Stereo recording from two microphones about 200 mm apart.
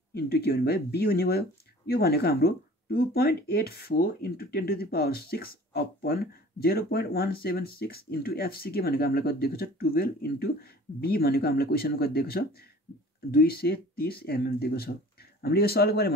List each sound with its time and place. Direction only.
0.1 s speech: 50° left (ahead or behind)